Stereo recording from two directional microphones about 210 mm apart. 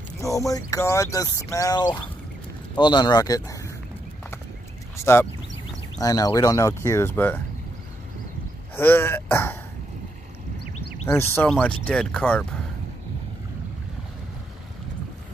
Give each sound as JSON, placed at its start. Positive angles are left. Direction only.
{"t": 0.2, "sound": "speech", "side_deg": 15}
{"t": 4.9, "sound": "speech", "side_deg": 10}
{"t": 8.7, "sound": "speech", "side_deg": 10}
{"t": 11.1, "sound": "speech", "side_deg": 10}